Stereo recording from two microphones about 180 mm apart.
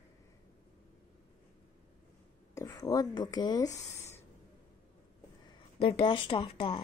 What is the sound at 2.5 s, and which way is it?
Speech, 20° left (ahead or behind).